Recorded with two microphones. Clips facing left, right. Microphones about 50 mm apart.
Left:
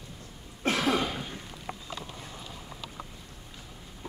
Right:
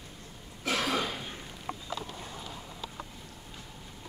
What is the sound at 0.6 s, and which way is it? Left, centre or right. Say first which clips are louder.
Cough: left 3 dB; left.